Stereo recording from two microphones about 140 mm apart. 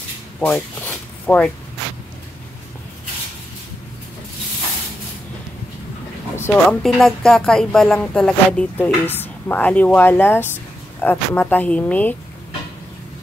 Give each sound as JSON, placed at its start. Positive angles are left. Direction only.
{"t": 0.4, "sound": "speech", "side_deg": 10}
{"t": 6.3, "sound": "speech", "side_deg": 15}
{"t": 7.0, "sound": "speech", "side_deg": 5}